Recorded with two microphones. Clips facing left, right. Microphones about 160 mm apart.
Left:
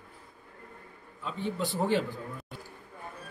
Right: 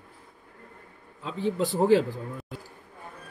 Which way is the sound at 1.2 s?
90° right.